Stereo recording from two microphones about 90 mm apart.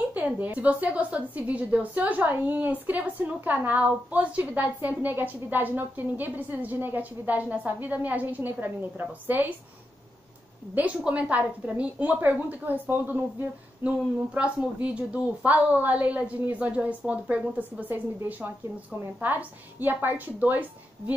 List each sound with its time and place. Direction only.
0.1 s a woman's voice: 20° right (ahead or behind)
10.7 s a woman's voice: 15° right (ahead or behind)